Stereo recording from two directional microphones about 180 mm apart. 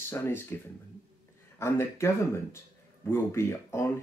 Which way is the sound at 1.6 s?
15° left (ahead or behind).